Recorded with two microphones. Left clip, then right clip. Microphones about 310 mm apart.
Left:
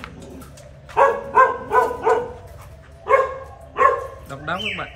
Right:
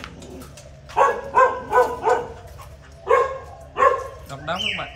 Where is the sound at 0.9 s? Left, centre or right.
Right.